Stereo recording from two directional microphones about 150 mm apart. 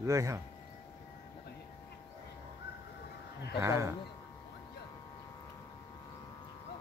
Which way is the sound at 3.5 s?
20° right (ahead or behind).